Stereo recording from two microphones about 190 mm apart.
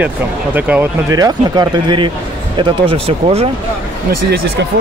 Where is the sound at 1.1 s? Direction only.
20° right (ahead or behind).